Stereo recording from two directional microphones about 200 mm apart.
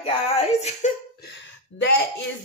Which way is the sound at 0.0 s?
30° left (ahead or behind).